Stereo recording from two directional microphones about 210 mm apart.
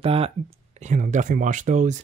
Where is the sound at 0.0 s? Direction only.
25° right (ahead or behind).